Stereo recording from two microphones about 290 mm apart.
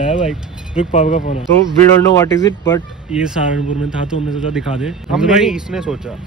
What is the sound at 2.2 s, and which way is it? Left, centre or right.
Speech, centre.